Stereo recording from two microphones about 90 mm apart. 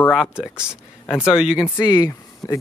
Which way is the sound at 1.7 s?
55° left (ahead or behind).